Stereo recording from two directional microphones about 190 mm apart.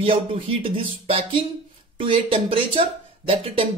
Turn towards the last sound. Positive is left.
turn(degrees=-30)  # may be behind; listen again after turning